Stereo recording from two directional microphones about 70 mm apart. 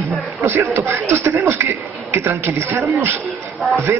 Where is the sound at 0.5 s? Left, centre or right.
Right.